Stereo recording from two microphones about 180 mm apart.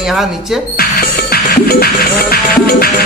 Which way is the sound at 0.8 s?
60° left (ahead or behind).